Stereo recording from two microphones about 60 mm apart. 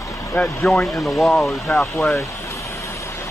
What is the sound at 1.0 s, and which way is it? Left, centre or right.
Speech, centre.